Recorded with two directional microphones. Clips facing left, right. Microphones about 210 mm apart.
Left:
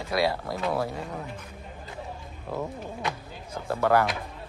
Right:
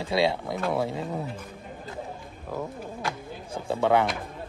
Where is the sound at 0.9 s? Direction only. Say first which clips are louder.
Right 4 dB; 20° right (ahead or behind).